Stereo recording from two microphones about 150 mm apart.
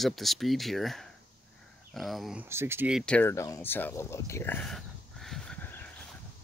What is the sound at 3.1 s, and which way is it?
Speech, 15° left (ahead or behind).